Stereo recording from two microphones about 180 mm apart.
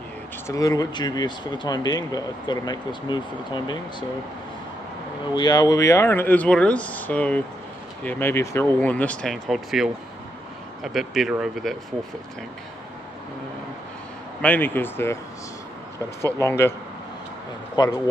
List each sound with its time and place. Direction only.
0.5 s speech: 20° left (ahead or behind)
5.3 s speech: 20° left (ahead or behind); by 11.7 s centre (ahead or behind)
14.4 s speech: 10° left (ahead or behind)
16.2 s speech: 15° left (ahead or behind)
17.8 s speech: 25° left (ahead or behind)